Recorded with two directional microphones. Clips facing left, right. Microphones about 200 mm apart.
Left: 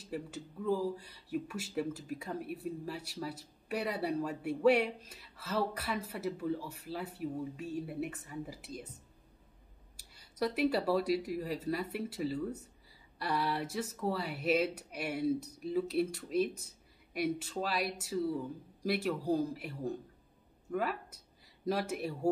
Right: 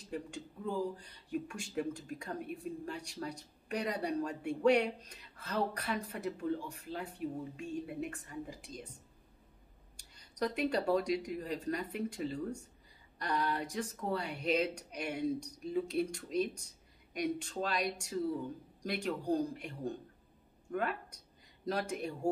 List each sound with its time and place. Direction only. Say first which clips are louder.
0.0 s speech: left 1 dB; 5° left (ahead or behind)
9.9 s speech: left 1 dB; 5° left (ahead or behind)